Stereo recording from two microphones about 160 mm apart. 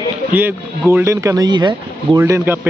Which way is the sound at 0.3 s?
10° right (ahead or behind).